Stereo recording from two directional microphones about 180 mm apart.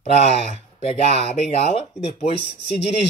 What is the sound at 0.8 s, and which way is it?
Speech, 35° left (ahead or behind).